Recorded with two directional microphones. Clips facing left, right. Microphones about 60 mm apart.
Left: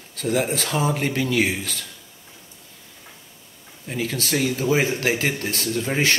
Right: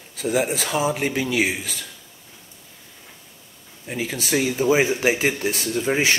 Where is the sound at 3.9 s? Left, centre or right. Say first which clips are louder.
Right 1 dB; centre.